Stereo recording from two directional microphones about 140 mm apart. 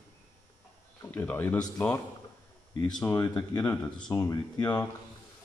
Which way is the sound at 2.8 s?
10° left (ahead or behind).